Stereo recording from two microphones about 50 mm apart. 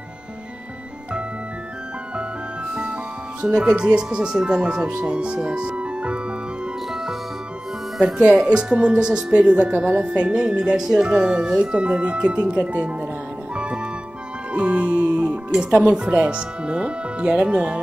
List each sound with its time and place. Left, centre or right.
3.4 s speech: centre
8.0 s speech: centre
14.5 s music: right
15.9 s speech: centre